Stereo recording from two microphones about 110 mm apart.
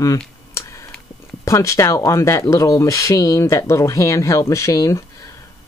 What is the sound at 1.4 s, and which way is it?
Speech, 30° left (ahead or behind).